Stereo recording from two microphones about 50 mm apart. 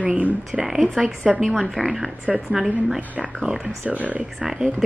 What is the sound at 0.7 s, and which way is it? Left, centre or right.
A woman's voice, centre.